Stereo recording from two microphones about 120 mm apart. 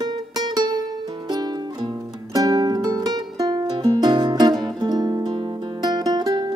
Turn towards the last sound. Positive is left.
turn(degrees=-35)  # may be behind; listen again after turning